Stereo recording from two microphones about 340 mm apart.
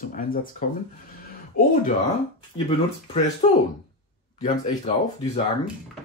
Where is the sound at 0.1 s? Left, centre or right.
Left.